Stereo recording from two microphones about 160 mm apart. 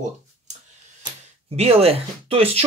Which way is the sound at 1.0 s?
35° right (ahead or behind).